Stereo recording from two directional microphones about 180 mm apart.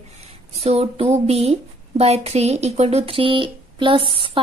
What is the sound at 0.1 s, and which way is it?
Speech, 35° right (ahead or behind).